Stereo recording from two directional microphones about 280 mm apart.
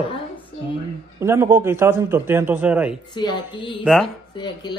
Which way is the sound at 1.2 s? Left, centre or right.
Centre.